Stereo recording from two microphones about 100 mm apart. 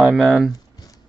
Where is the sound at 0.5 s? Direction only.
40° left (ahead or behind).